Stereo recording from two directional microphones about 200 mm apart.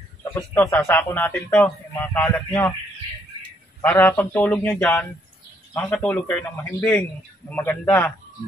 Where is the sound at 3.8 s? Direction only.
10° left (ahead or behind).